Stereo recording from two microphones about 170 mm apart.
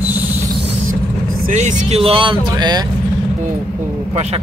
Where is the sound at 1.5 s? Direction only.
45° right (ahead or behind); by 2.8 s 25° right (ahead or behind).